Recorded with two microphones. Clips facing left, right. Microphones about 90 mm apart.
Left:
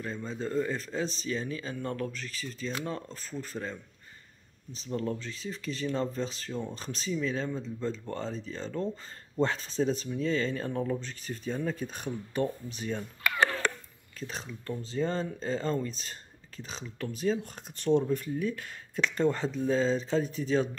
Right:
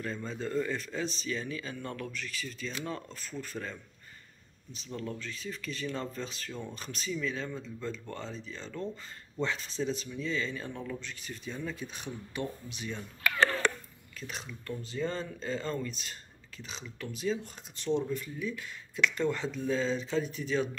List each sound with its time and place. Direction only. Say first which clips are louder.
0.0 s speech: left 1 dB; 20° left (ahead or behind)
4.7 s speech: left 6 dB; 35° left (ahead or behind)
14.2 s speech: left 3 dB; 35° left (ahead or behind)
18.9 s speech: left 2 dB; 35° left (ahead or behind)